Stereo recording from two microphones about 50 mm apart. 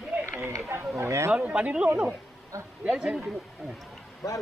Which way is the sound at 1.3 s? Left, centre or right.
Right.